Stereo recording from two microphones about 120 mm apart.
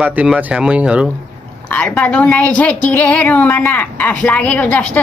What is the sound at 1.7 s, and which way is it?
A woman's voice, 10° left (ahead or behind).